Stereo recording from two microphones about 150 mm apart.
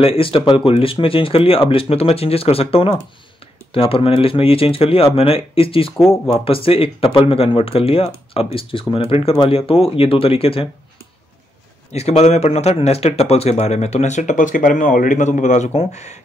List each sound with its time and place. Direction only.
0.0 s speech: 35° left (ahead or behind)
11.9 s speech: 45° left (ahead or behind)